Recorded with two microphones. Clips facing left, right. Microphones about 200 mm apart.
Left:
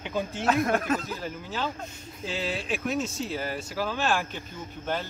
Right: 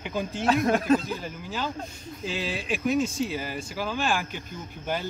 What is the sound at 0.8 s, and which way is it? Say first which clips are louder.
Speech: right 6 dB; 30° right (ahead or behind).